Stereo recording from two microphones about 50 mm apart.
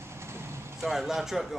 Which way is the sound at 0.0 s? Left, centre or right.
Right.